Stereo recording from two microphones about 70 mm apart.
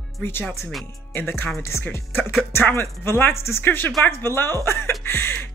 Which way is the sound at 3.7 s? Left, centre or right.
Left.